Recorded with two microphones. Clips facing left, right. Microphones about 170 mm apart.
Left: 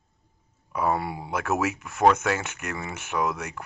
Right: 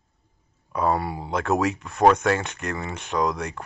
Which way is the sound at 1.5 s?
30° right (ahead or behind).